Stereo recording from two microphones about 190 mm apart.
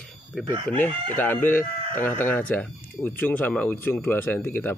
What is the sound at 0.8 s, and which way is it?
Speech, 10° left (ahead or behind).